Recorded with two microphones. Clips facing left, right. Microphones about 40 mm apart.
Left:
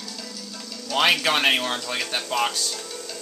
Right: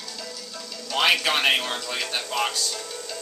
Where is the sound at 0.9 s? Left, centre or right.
Centre.